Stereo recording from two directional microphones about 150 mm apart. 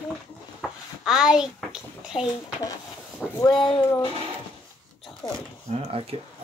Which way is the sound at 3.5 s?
35° left (ahead or behind).